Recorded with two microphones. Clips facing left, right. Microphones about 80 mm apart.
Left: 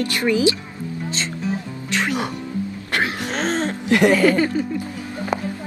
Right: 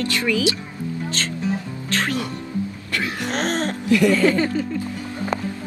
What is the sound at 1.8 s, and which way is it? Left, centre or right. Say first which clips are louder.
Music: left 1 dB; centre.